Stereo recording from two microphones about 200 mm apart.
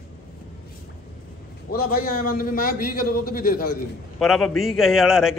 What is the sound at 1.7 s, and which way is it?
A man's voice, 50° left (ahead or behind).